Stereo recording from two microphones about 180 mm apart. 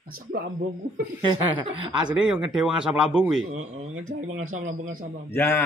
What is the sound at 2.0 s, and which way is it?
Speech, 5° right (ahead or behind).